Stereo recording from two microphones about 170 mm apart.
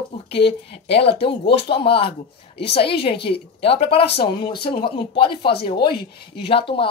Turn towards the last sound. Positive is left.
turn(degrees=30)  # may be behind; listen again after turning